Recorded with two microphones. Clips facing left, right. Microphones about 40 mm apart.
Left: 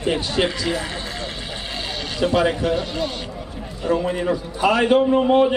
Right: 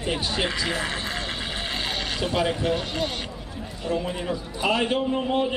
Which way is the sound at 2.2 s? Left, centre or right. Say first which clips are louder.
Left 7 dB; left.